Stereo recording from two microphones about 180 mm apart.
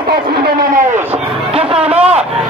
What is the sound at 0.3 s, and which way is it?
Speech, 50° right (ahead or behind).